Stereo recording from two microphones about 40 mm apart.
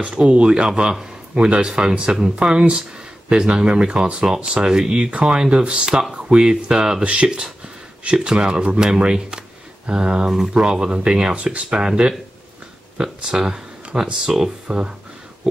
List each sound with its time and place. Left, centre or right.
0.0 s speech: right; by 14.5 s centre
14.7 s speech: right